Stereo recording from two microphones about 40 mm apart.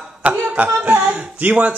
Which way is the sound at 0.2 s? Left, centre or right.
Right.